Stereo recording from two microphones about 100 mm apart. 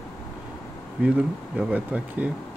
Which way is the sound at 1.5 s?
10° right (ahead or behind).